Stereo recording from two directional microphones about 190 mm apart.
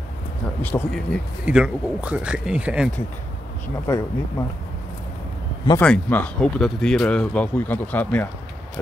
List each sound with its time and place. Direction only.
0.6 s speech: 10° left (ahead or behind)
1.4 s speech: 5° right (ahead or behind)
3.8 s speech: 15° left (ahead or behind)
5.8 s speech: 10° left (ahead or behind)